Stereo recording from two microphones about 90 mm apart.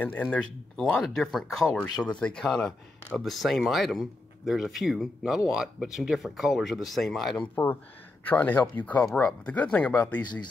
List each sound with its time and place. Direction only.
0.0 s speech: 15° left (ahead or behind)
8.3 s speech: 20° left (ahead or behind)